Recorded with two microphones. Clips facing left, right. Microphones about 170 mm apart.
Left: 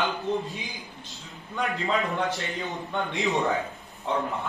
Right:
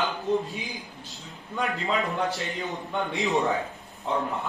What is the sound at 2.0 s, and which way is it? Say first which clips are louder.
A man's voice: even; centre (ahead or behind).